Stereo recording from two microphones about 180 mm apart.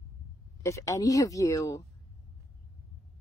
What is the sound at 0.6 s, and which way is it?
Speech, 15° left (ahead or behind).